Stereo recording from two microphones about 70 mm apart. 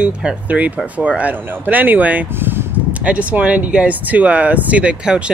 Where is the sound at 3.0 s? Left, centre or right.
Centre.